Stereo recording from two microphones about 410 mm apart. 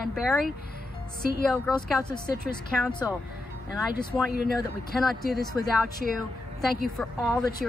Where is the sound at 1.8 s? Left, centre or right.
Centre.